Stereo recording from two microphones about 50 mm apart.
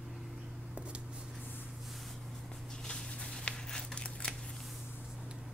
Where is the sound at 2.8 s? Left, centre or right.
Centre.